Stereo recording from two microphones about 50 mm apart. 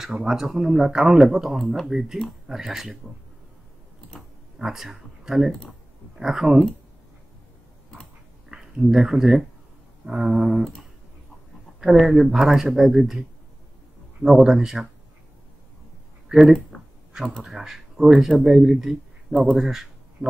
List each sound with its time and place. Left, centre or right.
0.2 s speech: centre
4.6 s speech: centre
8.5 s speech: centre
11.8 s speech: centre
14.2 s speech: centre
16.3 s speech: centre
16.7 s a sound: left
17.4 s speech: centre
19.5 s a sound: centre